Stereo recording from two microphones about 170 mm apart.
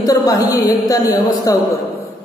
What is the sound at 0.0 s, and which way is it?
A man's voice, 20° left (ahead or behind).